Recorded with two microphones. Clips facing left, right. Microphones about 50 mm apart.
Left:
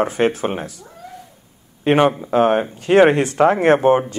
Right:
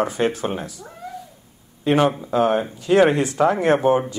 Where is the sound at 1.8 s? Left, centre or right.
Left.